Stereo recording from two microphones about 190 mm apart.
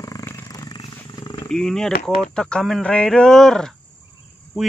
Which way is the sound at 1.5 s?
5° left (ahead or behind).